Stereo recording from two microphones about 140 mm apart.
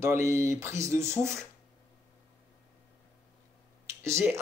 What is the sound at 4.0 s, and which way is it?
Speech, 20° right (ahead or behind).